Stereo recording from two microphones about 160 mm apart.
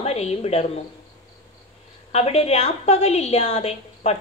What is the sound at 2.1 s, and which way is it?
A woman's voice, 40° left (ahead or behind).